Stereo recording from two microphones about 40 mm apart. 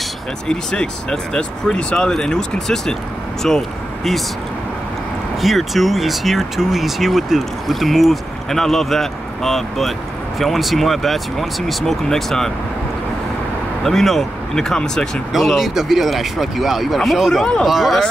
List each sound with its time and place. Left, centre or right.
0.5 s speech: centre
5.4 s speech: centre
8.5 s speech: centre
13.8 s speech: centre
14.8 s speech: left
15.4 s speech: centre